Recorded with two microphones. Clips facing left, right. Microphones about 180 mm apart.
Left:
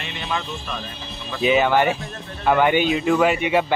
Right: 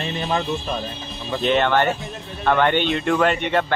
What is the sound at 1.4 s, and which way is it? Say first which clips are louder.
Speech: left 1 dB; 5° left (ahead or behind).